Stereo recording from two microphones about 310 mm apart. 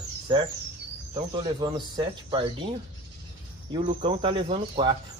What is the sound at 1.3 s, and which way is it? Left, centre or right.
Speech, centre.